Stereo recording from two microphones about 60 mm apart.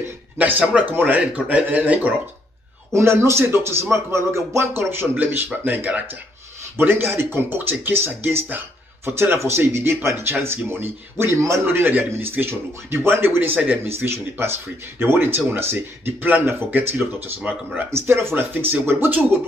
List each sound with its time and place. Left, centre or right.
0.4 s speech: right
2.9 s speech: right
5.1 s speech: right
6.8 s speech: right
8.5 s a sound: right
9.1 s speech: right
11.6 s speech: right
13.8 s speech: right
17.9 s speech: right